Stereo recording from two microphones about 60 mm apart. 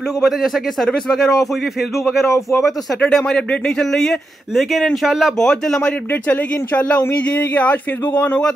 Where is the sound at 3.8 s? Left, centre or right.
Centre.